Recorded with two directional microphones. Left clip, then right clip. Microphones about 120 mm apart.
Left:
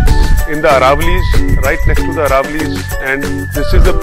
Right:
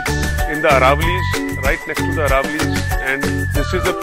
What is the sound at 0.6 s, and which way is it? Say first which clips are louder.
Music: left 4 dB; 30° left (ahead or behind).